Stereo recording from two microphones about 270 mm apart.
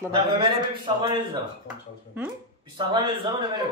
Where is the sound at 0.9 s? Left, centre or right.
Centre.